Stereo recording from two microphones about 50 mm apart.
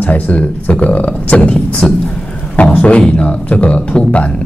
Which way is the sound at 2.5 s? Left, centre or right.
Left.